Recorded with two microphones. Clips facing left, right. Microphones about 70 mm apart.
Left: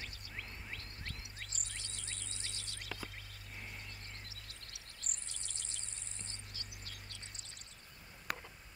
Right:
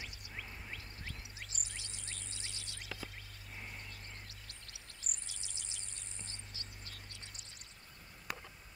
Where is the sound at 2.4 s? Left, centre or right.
Right.